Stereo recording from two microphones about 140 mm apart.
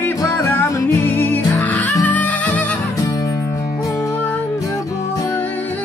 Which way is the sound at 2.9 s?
25° left (ahead or behind).